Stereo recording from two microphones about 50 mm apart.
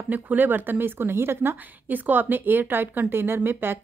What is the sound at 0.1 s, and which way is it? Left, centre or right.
Speech, right.